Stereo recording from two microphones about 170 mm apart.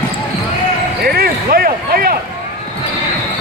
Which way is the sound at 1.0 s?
65° right (ahead or behind).